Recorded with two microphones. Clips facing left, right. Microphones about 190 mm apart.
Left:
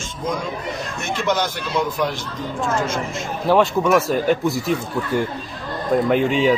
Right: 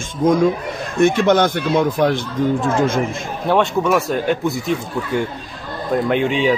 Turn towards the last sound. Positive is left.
turn(degrees=0)  # may be behind; listen again after turning